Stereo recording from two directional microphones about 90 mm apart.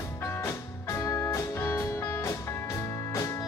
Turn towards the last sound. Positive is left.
turn(degrees=30)  # may be behind; listen again after turning